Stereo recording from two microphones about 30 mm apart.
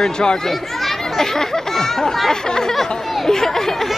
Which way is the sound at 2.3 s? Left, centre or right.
Left.